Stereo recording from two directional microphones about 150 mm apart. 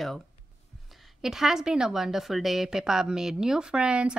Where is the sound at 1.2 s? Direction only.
5° right (ahead or behind).